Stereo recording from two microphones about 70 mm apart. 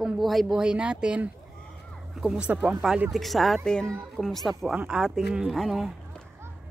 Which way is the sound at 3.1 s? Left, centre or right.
Centre.